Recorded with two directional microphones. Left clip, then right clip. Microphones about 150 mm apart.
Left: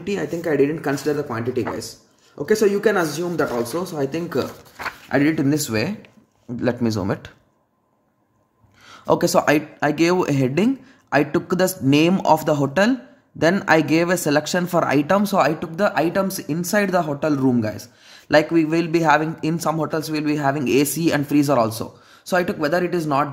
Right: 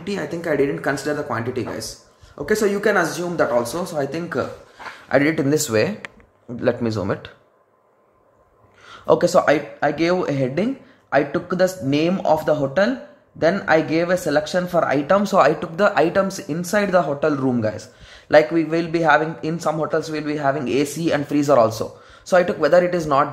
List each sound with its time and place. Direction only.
0.0 s speech: 20° left (ahead or behind)
8.8 s speech: 25° left (ahead or behind)